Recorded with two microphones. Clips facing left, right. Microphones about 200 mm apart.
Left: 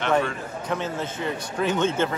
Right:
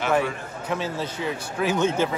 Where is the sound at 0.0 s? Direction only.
5° right (ahead or behind).